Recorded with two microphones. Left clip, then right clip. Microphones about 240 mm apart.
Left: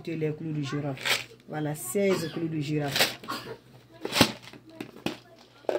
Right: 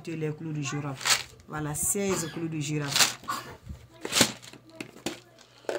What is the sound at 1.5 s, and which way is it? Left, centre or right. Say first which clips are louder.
Speech: left 1 dB; centre.